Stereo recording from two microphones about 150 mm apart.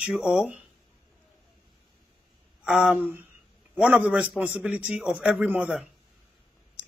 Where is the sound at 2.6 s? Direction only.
5° right (ahead or behind).